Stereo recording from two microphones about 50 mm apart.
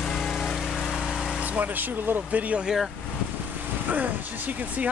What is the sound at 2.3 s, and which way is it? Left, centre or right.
Speech, right.